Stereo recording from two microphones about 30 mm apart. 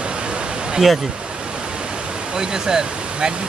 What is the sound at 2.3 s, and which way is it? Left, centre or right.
Speech, right.